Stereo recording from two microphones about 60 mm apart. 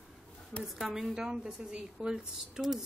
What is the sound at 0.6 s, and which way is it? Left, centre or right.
A woman's voice, centre.